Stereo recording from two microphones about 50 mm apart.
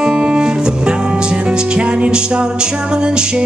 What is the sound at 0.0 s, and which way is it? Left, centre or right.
Music, centre.